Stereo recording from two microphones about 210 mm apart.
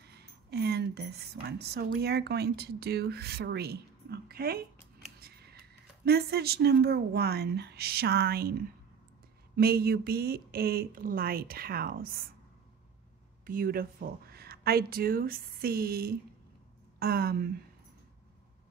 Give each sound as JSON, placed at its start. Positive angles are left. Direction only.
{"t": 0.0, "sound": "a woman's voice", "side_deg": -50}
{"t": 9.6, "sound": "speech", "side_deg": -45}
{"t": 13.5, "sound": "speech", "side_deg": -45}